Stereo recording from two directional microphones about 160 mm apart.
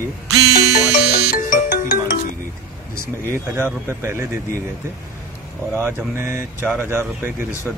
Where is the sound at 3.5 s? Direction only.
15° right (ahead or behind).